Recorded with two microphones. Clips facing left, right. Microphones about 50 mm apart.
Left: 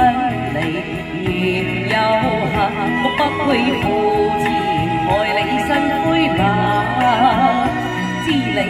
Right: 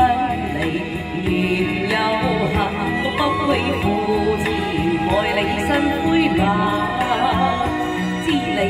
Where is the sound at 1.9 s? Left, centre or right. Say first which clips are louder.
Left 6 dB; left.